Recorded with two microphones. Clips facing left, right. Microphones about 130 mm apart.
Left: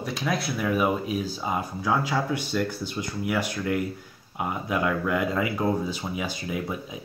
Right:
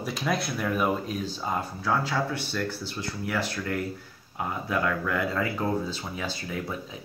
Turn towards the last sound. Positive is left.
turn(degrees=15)  # may be behind; listen again after turning